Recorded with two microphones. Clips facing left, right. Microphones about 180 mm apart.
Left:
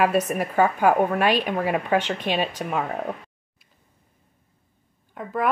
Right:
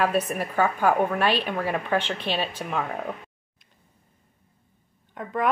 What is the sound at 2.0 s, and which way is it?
Speech, 45° left (ahead or behind).